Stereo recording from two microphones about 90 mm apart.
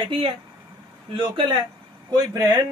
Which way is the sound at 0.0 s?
75° right (ahead or behind).